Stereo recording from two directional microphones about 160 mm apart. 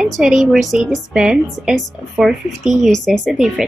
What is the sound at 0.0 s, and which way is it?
A woman's voice, centre (ahead or behind).